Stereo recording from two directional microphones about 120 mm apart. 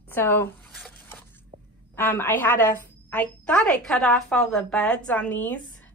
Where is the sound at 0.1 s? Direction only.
20° left (ahead or behind).